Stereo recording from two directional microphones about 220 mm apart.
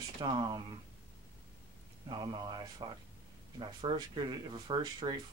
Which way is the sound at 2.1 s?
20° right (ahead or behind).